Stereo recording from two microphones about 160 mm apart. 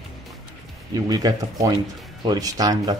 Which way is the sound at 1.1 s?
25° right (ahead or behind).